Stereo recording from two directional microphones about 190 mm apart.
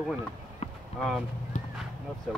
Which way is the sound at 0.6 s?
35° left (ahead or behind).